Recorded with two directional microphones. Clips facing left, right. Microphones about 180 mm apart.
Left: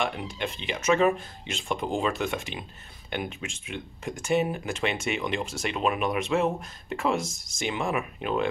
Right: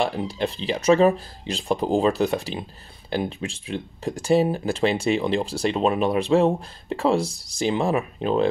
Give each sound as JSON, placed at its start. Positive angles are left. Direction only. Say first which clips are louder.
{"t": 0.0, "sound": "speech", "louder": "right 6 dB", "side_deg": -35}